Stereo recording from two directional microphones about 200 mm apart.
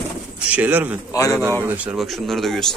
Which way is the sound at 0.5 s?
10° right (ahead or behind).